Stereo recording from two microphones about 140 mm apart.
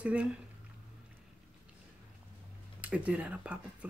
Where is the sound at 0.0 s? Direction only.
10° right (ahead or behind).